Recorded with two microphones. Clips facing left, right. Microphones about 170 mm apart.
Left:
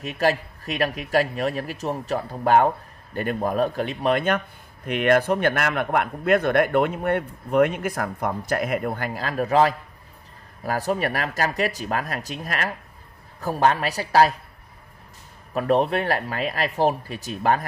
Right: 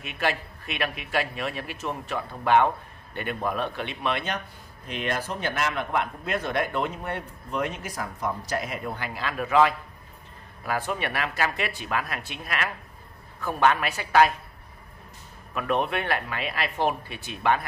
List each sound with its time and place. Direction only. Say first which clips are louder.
0.0 s a man's voice: left 6 dB; 40° left (ahead or behind)
4.8 s a man's voice: left 11 dB; 60° left (ahead or behind); by 14.3 s 35° left (ahead or behind)
15.5 s a man's voice: left 6 dB; 35° left (ahead or behind)